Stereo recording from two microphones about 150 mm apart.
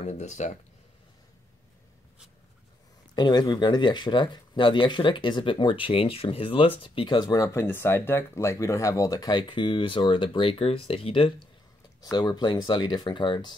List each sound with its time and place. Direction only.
0.0 s speech: 50° left (ahead or behind)
3.2 s speech: 30° left (ahead or behind)